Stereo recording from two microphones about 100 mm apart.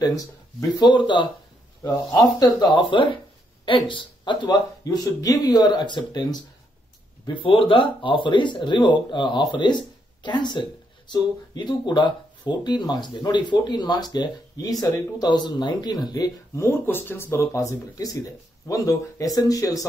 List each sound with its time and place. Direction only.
0.0 s speech: 35° left (ahead or behind); by 1.3 s 55° left (ahead or behind)
1.8 s speech: 35° left (ahead or behind)
4.8 s speech: 35° left (ahead or behind)
7.4 s speech: 60° left (ahead or behind); by 16.6 s 40° left (ahead or behind)
16.6 s speech: 20° left (ahead or behind)